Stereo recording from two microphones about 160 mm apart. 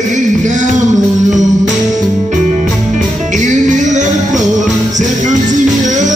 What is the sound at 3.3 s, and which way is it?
Music, 50° right (ahead or behind).